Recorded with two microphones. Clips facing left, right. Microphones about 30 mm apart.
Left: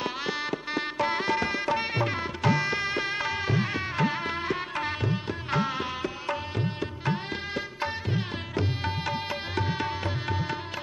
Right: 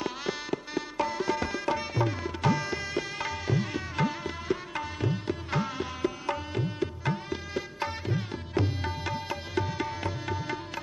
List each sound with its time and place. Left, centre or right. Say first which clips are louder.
0.0 s music: left 3 dB; left
0.5 s music: left 3 dB; left
5.5 s music: left 6 dB; left
8.8 s music: left 3 dB; left